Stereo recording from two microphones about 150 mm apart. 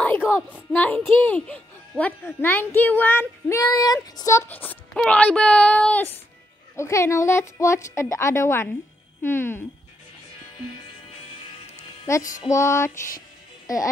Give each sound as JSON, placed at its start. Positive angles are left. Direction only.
{"t": 0.0, "sound": "a sound", "side_deg": 10}
{"t": 0.7, "sound": "a child's voice", "side_deg": 10}
{"t": 12.2, "sound": "music", "side_deg": 60}
{"t": 12.4, "sound": "a woman's voice", "side_deg": 20}